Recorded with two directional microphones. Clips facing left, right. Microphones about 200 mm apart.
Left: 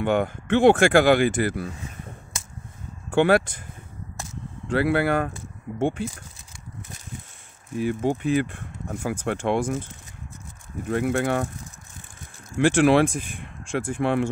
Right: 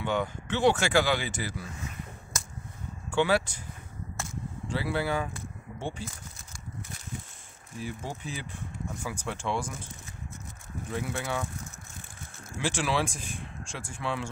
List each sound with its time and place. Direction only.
0.0 s speech: 55° left (ahead or behind)
3.1 s speech: 55° left (ahead or behind)
4.6 s speech: 60° left (ahead or behind)
7.8 s speech: 60° left (ahead or behind)
10.9 s speech: 60° left (ahead or behind)
12.5 s speech: 55° left (ahead or behind)